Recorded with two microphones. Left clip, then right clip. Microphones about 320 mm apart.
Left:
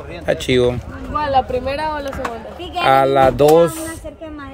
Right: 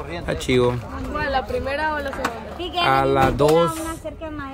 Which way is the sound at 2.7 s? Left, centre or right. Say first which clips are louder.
Left 5 dB; centre.